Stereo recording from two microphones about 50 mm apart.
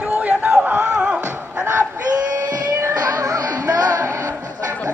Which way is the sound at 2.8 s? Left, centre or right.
Right.